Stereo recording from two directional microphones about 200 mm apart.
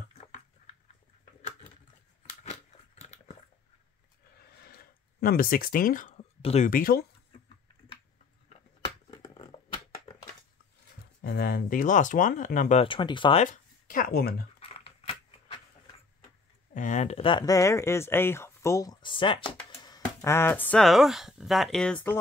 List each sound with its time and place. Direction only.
3.0 s dog: 35° left (ahead or behind)
4.4 s a sound: 55° left (ahead or behind); by 6.7 s 35° left (ahead or behind)
6.7 s speech: 45° left (ahead or behind)
9.2 s a sound: 20° left (ahead or behind)
11.1 s speech: 50° left (ahead or behind)
12.8 s speech: 25° left (ahead or behind)
13.4 s speech: 40° left (ahead or behind)
14.6 s a sound: 30° left (ahead or behind)
16.7 s speech: 40° left (ahead or behind); by 22.2 s 10° left (ahead or behind)